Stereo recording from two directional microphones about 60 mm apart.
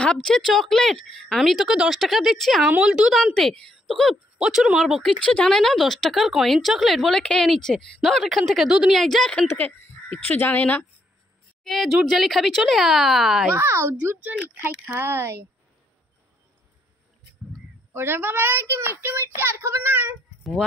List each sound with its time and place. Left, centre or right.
0.0 s a woman's voice: centre
2.8 s speech: centre
3.3 s a woman's voice: centre
4.4 s speech: centre
5.2 s speech: centre
5.5 s a woman's voice: centre
9.6 s speech: left
11.6 s speech: centre
13.6 s speech: right
15.0 s speech: right
17.9 s speech: right